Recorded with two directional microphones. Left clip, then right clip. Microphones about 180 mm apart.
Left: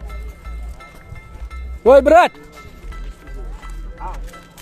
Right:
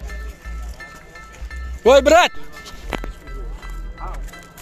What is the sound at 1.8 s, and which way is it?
Speech, 15° left (ahead or behind).